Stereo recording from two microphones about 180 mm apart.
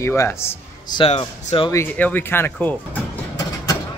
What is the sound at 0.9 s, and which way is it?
Speech, 35° left (ahead or behind).